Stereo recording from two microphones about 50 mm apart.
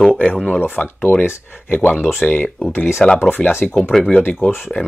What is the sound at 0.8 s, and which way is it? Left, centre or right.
Speech, left.